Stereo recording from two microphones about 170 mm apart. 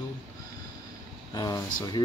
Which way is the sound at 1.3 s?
20° left (ahead or behind).